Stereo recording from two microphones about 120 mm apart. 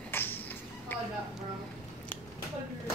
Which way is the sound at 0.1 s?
20° left (ahead or behind).